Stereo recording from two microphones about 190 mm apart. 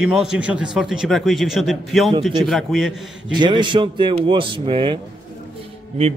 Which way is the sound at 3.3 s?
25° right (ahead or behind).